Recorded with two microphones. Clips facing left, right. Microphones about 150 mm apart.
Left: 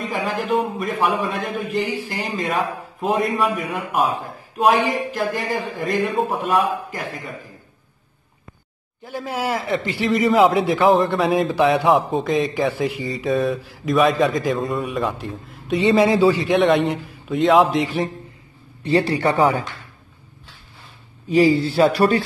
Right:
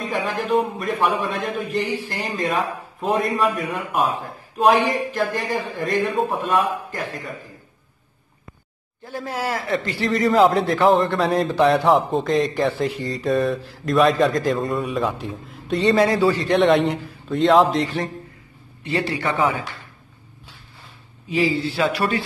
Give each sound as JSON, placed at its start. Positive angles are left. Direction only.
{"t": 0.0, "sound": "speech", "side_deg": 0}
{"t": 4.6, "sound": "speech", "side_deg": 0}
{"t": 9.0, "sound": "a man's voice", "side_deg": 15}
{"t": 10.2, "sound": "speech", "side_deg": 0}
{"t": 15.8, "sound": "a man's voice", "side_deg": 10}
{"t": 16.4, "sound": "speech", "side_deg": 0}
{"t": 18.8, "sound": "speech", "side_deg": 35}
{"t": 21.3, "sound": "speech", "side_deg": 40}